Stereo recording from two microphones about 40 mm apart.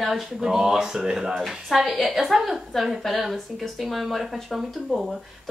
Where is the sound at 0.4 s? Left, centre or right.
Centre.